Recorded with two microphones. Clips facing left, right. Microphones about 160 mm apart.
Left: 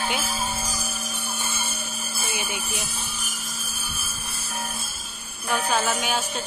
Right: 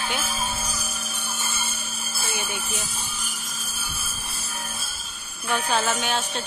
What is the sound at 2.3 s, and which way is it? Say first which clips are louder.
Speech: even; 15° left (ahead or behind).